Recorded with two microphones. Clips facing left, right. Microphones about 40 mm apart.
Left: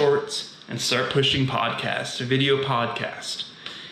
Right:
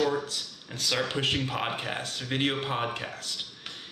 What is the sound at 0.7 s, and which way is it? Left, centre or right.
Speech, left.